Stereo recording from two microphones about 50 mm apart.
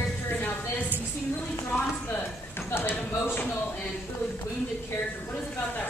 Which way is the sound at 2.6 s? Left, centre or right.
Left.